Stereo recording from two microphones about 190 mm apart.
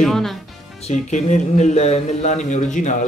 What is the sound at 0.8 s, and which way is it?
Speech, 40° left (ahead or behind).